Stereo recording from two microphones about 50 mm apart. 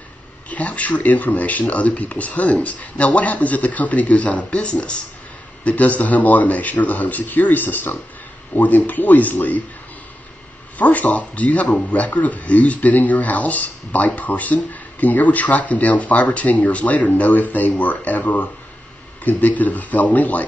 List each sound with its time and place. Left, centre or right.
0.5 s a man's voice: left
10.8 s a man's voice: left